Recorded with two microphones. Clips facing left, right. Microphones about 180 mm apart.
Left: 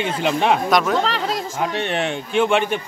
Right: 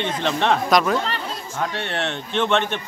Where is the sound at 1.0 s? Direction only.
90° left.